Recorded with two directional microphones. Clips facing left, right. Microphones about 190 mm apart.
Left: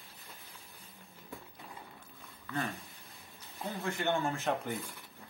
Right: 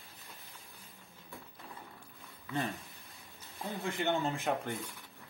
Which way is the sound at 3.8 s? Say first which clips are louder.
Even; 15° right (ahead or behind).